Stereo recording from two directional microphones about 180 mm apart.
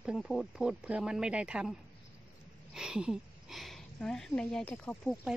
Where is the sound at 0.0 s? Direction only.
Centre (ahead or behind).